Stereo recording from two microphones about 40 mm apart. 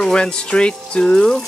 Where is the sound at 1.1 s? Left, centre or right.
Centre.